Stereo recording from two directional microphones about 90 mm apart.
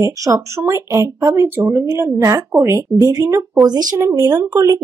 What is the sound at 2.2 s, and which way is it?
Speech, 45° right (ahead or behind).